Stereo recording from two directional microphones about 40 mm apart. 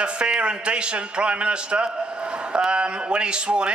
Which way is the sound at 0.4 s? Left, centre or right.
Right.